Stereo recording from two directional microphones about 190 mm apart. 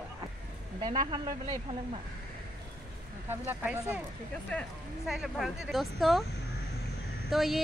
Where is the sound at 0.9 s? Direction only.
25° right (ahead or behind).